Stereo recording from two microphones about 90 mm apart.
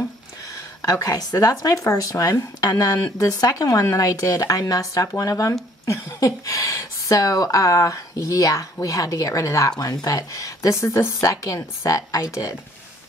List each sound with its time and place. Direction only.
0.8 s speech: 40° left (ahead or behind)